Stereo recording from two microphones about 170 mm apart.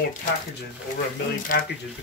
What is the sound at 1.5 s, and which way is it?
Speech, 55° left (ahead or behind).